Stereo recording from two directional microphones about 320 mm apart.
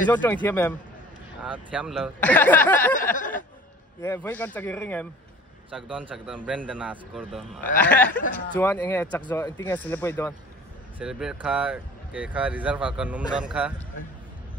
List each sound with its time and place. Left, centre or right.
0.1 s speech: centre
3.2 s a sound: left
4.0 s speech: centre
5.7 s speech: centre